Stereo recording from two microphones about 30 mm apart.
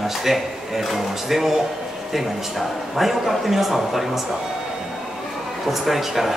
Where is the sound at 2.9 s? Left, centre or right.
Centre.